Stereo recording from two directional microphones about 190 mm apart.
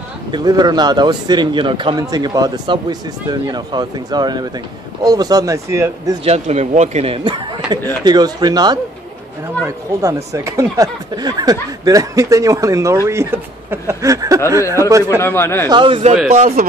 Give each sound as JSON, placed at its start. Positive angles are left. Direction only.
{"t": 0.3, "sound": "a man's voice", "side_deg": -20}
{"t": 6.2, "sound": "a man's voice", "side_deg": -35}
{"t": 10.0, "sound": "speech", "side_deg": -15}
{"t": 15.0, "sound": "speech", "side_deg": 15}
{"t": 15.7, "sound": "a man's voice", "side_deg": -25}